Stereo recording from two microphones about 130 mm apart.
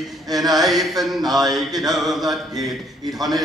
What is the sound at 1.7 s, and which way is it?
Mantra, 30° right (ahead or behind).